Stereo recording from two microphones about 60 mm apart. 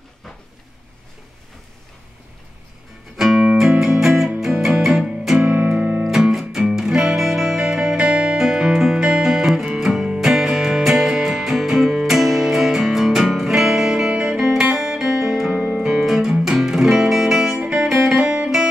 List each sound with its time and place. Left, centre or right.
3.2 s music: centre
5.5 s music: right
6.0 s music: centre
17.6 s music: centre